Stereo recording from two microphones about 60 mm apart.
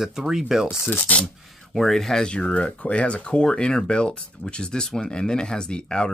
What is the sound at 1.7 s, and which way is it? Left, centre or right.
Speech, centre.